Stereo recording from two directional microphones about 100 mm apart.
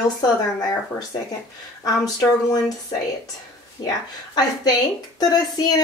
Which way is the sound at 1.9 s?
40° left (ahead or behind).